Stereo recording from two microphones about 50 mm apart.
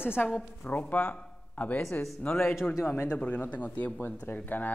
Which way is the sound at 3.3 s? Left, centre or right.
Left.